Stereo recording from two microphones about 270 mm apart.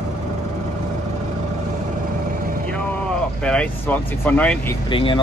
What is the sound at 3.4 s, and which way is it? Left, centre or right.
Speech, centre.